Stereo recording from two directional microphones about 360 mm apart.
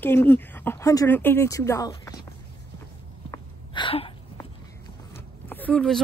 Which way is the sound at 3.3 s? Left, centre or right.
Centre.